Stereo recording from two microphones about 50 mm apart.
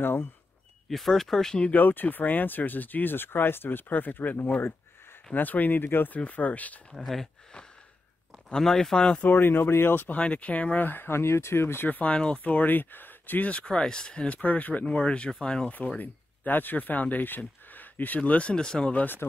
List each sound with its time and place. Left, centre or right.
0.0 s speech: left
0.8 s speech: centre
1.6 s speech: left
6.1 s speech: left
6.9 s speech: centre
8.5 s speech: centre
9.2 s speech: left
10.1 s speech: left
10.9 s speech: left
11.9 s speech: left
14.4 s speech: left
14.9 s speech: left
16.0 s speech: left; by 18.9 s centre